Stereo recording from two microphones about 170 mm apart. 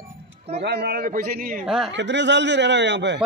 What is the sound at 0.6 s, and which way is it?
A man's voice, 75° right (ahead or behind).